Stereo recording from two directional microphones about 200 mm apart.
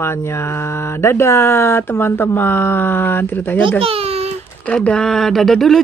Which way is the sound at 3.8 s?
30° right (ahead or behind).